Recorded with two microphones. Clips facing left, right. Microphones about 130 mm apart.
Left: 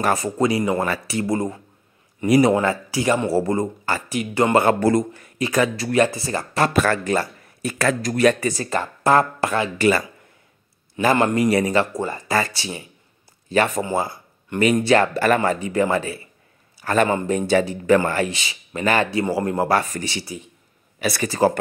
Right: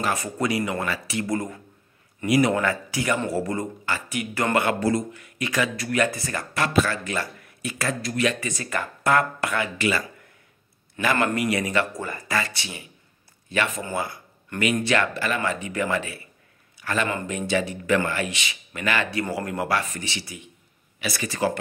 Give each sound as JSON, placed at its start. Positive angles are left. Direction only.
{"t": 0.1, "sound": "speech", "side_deg": 30}
{"t": 2.2, "sound": "speech", "side_deg": 35}
{"t": 2.5, "sound": "speech", "side_deg": 25}
{"t": 4.6, "sound": "speech", "side_deg": 50}
{"t": 6.8, "sound": "speech", "side_deg": 45}
{"t": 11.0, "sound": "speech", "side_deg": 30}
{"t": 12.4, "sound": "speech", "side_deg": 35}
{"t": 15.1, "sound": "a man's voice", "side_deg": 50}
{"t": 21.0, "sound": "speech", "side_deg": 50}
{"t": 21.3, "sound": "speech", "side_deg": 35}